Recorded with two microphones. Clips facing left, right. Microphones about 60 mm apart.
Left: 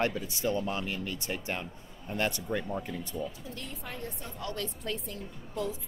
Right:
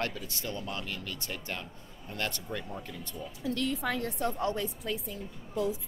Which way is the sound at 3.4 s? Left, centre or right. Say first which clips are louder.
Right 11 dB; right.